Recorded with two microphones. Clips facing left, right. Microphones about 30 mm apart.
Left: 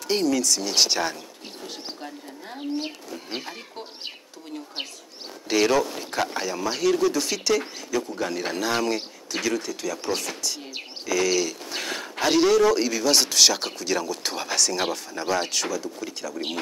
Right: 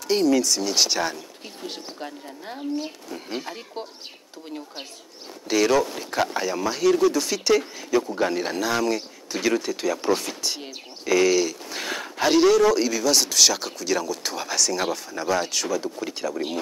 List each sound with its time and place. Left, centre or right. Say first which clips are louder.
0.3 s speech: right 3 dB; centre
0.6 s speech: even; centre
2.0 s speech: right 2 dB; centre
5.5 s speech: right 1 dB; centre
7.4 s speech: right 3 dB; centre
8.5 s speech: right 1 dB; centre
9.3 s speech: right 3 dB; centre
10.4 s speech: right 2 dB; right
11.1 s speech: right 4 dB; centre
15.8 s speech: right 4 dB; centre